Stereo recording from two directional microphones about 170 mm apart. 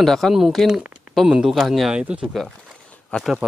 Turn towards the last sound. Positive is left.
turn(degrees=-5)  # may be behind; listen again after turning